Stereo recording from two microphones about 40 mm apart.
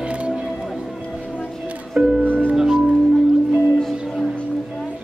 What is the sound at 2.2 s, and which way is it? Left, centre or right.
Music, right.